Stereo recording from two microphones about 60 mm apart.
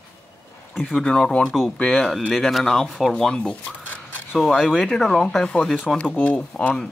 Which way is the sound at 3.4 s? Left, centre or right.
Left.